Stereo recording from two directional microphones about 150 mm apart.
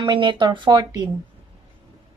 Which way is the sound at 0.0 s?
30° right (ahead or behind).